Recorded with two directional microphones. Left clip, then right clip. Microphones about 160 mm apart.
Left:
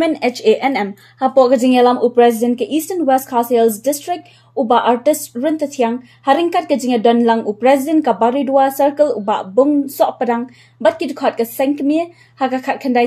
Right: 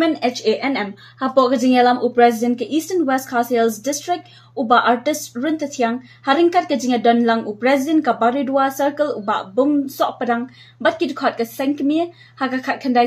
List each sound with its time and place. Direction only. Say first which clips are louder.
0.0 s a woman's voice: left 3 dB; 35° left (ahead or behind)